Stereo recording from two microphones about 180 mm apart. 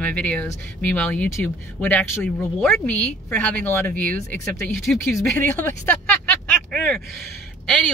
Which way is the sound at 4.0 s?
50° right (ahead or behind).